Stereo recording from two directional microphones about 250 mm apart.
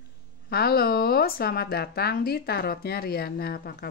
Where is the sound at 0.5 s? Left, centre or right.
Left.